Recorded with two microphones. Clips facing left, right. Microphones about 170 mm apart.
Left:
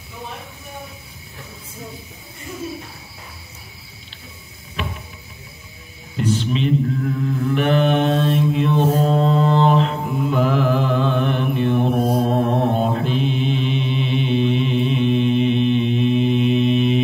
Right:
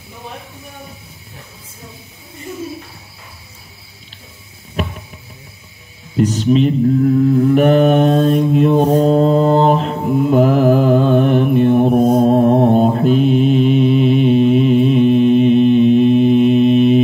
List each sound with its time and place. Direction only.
4.8 s music: 45° right (ahead or behind)
6.1 s mantra: 45° right (ahead or behind)